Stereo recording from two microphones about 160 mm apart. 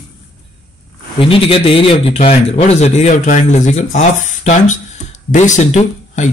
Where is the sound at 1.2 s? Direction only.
35° left (ahead or behind).